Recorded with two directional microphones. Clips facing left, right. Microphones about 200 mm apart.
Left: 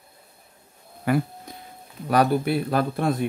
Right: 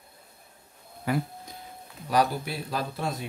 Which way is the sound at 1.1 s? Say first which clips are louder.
Left 5 dB; 60° left (ahead or behind).